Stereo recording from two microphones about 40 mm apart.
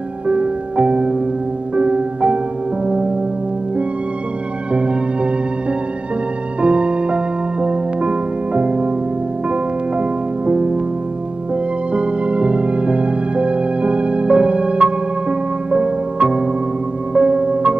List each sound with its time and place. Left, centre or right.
0.3 s music: right
4.7 s music: right
11.9 s music: right